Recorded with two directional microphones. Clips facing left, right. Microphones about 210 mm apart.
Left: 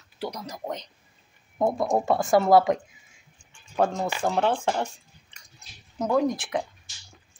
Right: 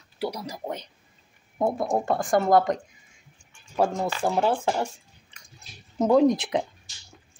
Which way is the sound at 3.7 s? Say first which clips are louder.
Even; 5° right (ahead or behind).